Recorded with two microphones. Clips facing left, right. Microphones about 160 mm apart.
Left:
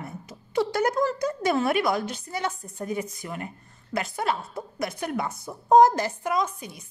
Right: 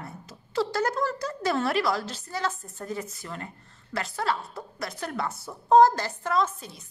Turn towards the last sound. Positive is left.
turn(degrees=15)  # may be behind; listen again after turning